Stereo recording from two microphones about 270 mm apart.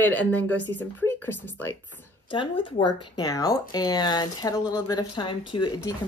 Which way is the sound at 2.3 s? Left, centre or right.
Centre.